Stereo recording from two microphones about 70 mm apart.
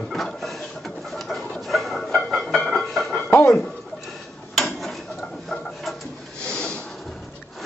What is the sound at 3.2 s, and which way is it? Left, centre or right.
Dishes, left.